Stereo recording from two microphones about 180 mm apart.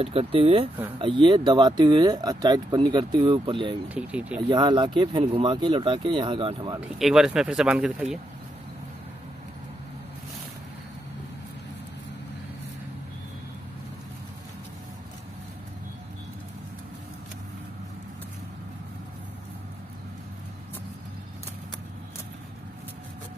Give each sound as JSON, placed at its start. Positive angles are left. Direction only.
{"t": 0.0, "sound": "speech", "side_deg": -30}
{"t": 3.9, "sound": "speech", "side_deg": -5}
{"t": 4.4, "sound": "speech", "side_deg": -25}
{"t": 6.8, "sound": "speech", "side_deg": 0}